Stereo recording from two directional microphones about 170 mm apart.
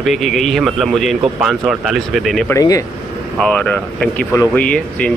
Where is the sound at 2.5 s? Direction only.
20° left (ahead or behind).